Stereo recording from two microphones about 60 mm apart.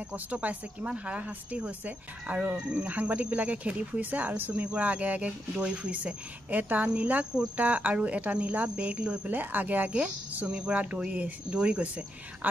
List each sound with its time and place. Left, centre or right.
0.1 s speech: right
6.5 s speech: right
9.3 s speech: right